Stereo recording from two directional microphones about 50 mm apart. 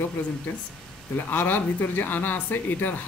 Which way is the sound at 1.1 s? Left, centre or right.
Left.